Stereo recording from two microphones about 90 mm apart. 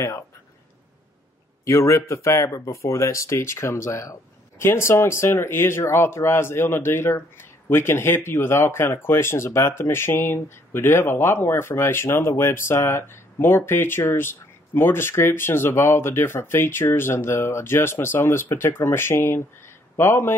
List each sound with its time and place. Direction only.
1.6 s speech: 30° left (ahead or behind)